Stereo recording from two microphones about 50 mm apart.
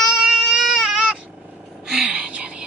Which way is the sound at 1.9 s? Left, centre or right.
Centre.